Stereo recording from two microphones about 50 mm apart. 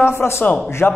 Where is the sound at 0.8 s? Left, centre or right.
Left.